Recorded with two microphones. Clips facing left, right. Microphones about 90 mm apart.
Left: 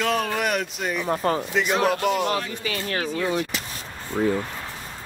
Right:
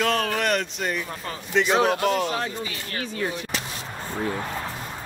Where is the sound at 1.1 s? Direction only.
45° left (ahead or behind).